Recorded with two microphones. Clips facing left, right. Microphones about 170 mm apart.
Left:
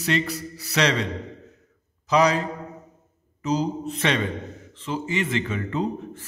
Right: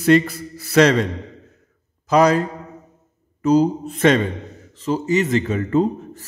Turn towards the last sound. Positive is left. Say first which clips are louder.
# right 8 dB
turn(degrees=-45)  # may be behind; listen again after turning